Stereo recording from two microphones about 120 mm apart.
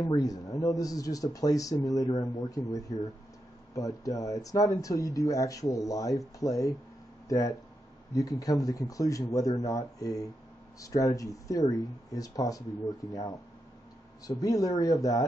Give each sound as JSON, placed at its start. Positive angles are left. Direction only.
{"t": 0.0, "sound": "speech", "side_deg": 30}
{"t": 14.4, "sound": "speech", "side_deg": 30}